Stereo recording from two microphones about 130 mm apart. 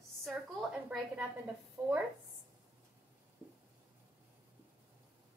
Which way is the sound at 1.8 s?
15° right (ahead or behind).